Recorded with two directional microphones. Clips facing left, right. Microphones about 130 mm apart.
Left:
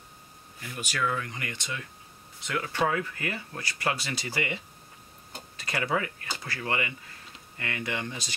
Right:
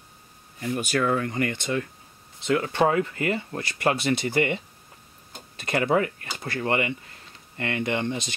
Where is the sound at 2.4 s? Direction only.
30° right (ahead or behind).